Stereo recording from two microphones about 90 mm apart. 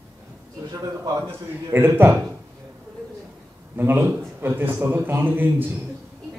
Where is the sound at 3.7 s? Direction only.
25° right (ahead or behind).